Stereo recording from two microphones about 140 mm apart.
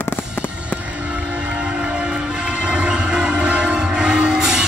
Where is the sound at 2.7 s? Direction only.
5° right (ahead or behind).